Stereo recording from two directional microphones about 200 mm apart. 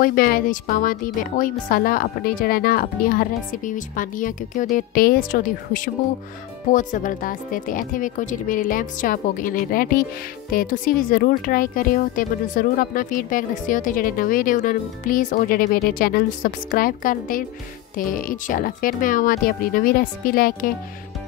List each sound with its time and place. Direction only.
0.0 s speech: 45° left (ahead or behind)